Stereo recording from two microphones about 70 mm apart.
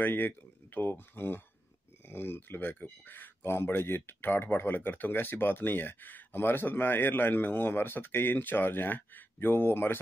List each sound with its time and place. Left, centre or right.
0.0 s speech: left